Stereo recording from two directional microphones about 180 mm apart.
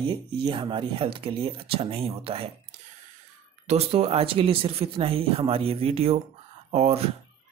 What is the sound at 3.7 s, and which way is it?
Speech, 35° right (ahead or behind).